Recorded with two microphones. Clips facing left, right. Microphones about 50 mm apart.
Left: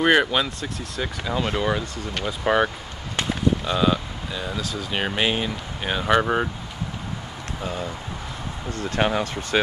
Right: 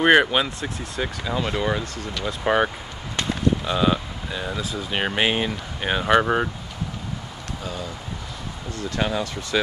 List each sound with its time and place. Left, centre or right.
0.0 s speech: centre
1.2 s speech: centre
3.6 s speech: centre
7.6 s speech: left